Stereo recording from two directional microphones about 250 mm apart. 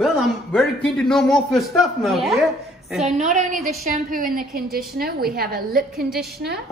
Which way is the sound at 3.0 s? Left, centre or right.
Right.